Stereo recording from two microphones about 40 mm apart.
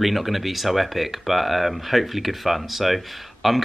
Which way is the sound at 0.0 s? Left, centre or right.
Centre.